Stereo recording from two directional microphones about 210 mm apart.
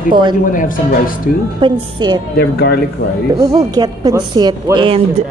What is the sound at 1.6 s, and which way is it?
Speech, 20° right (ahead or behind).